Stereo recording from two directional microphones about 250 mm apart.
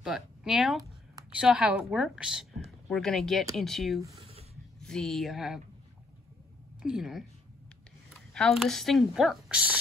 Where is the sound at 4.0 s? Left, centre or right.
Right.